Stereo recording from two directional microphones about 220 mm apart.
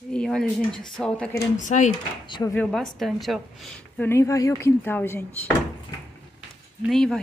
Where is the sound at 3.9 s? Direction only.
10° left (ahead or behind).